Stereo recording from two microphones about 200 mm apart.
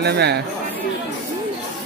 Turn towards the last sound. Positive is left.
turn(degrees=-55)  # may be behind; listen again after turning